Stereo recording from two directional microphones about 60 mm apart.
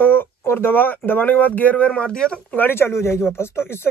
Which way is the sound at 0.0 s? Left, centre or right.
Left.